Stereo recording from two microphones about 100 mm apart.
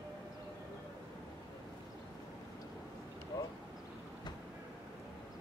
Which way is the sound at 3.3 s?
30° left (ahead or behind).